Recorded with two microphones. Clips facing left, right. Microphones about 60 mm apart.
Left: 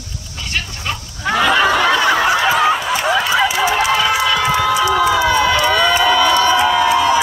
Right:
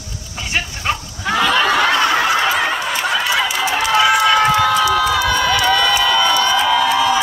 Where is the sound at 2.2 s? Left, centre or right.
Centre.